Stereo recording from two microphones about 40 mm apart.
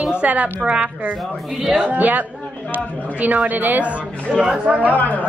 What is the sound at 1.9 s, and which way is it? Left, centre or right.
A woman's voice, right.